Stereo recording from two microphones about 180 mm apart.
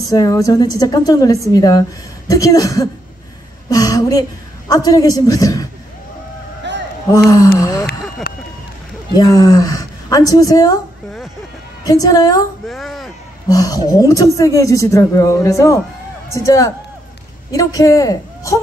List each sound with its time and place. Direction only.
0.1 s a woman's voice: 20° left (ahead or behind)
6.7 s a sound: 75° right (ahead or behind)
7.2 s a woman's voice: 20° left (ahead or behind)
8.3 s speech: 55° left (ahead or behind)
9.1 s a woman's voice: 20° left (ahead or behind)
11.8 s a woman's voice: 20° left (ahead or behind)
12.6 s a sound: centre (ahead or behind)
13.5 s a man's voice: 20° left (ahead or behind)